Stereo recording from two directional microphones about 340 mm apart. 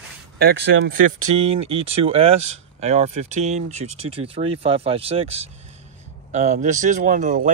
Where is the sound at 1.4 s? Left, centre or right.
Centre.